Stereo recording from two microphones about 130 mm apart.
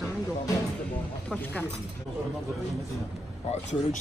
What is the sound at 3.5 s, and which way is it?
Speech, 60° left (ahead or behind).